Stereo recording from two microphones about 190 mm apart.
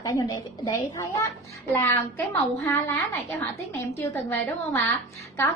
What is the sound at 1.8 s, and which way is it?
A woman's voice, 10° left (ahead or behind).